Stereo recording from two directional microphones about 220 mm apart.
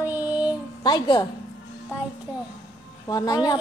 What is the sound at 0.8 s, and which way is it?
Speech, 20° left (ahead or behind).